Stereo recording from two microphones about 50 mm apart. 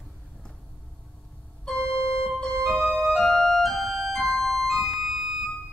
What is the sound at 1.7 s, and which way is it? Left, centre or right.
Organ, centre.